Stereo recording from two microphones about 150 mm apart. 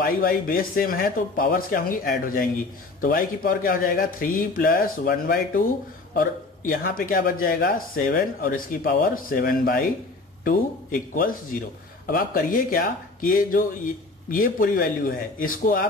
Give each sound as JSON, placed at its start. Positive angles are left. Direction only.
{"t": 0.0, "sound": "speech", "side_deg": 70}
{"t": 10.4, "sound": "speech", "side_deg": 70}